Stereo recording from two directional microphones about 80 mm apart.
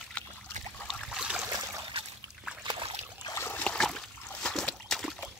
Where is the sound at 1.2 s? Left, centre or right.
Centre.